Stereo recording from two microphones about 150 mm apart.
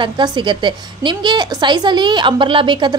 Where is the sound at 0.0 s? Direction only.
30° right (ahead or behind).